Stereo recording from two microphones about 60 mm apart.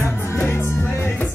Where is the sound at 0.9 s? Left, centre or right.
Left.